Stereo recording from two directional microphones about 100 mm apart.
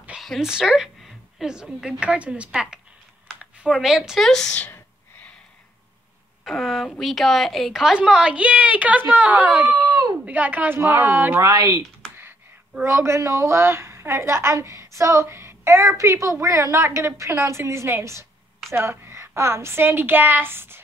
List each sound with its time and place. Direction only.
0.2 s a woman's voice: 5° right (ahead or behind)
4.6 s gasp: 20° left (ahead or behind)
6.4 s a woman's voice: centre (ahead or behind); by 9.8 s 15° right (ahead or behind)
9.8 s a sound: 40° right (ahead or behind)
10.2 s a woman's voice: 15° right (ahead or behind)
11.4 s speech: 35° right (ahead or behind)
12.8 s a woman's voice: 25° right (ahead or behind)